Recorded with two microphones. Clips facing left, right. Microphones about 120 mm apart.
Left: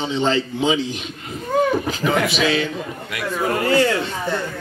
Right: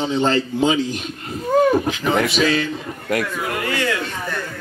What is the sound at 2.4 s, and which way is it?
Speech, 45° right (ahead or behind).